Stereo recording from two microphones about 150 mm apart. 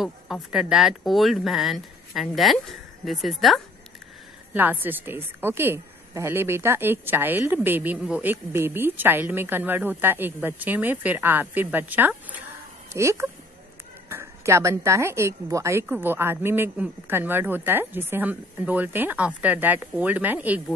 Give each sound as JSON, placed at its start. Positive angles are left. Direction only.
{"t": 0.0, "sound": "speech", "side_deg": -5}
{"t": 4.6, "sound": "a woman's voice", "side_deg": -15}